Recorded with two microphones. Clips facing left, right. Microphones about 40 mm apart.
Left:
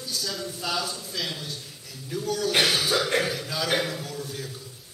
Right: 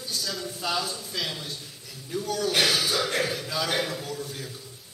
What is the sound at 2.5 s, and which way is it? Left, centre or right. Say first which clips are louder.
Music: left 2 dB; centre.